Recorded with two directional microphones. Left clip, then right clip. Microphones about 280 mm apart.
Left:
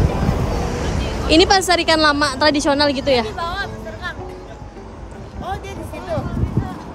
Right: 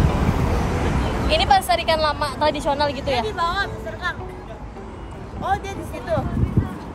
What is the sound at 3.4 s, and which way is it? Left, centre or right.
Speech, centre.